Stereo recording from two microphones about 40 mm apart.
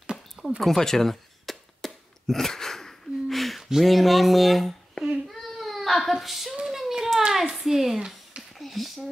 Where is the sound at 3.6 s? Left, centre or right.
Centre.